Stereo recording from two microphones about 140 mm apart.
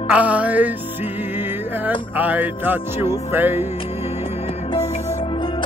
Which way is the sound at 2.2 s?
10° right (ahead or behind).